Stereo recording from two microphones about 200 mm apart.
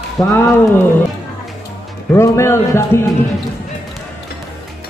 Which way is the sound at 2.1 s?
15° left (ahead or behind).